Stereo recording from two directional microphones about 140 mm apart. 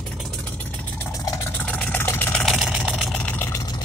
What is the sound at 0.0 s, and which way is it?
Vehicle, 5° left (ahead or behind).